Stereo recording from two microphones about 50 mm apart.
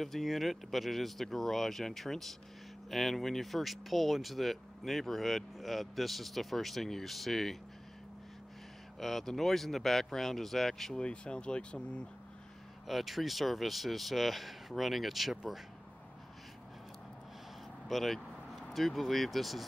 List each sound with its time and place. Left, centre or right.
0.0 s speech: centre
9.0 s speech: centre
11.0 s speech: centre
12.8 s speech: centre
17.8 s speech: centre